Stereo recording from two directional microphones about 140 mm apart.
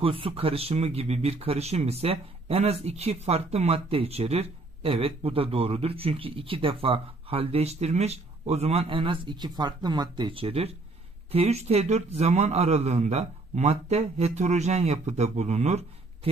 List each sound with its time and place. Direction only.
0.0 s speech: 40° right (ahead or behind)